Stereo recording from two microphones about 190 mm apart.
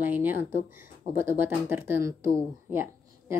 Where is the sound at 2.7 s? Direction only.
15° right (ahead or behind).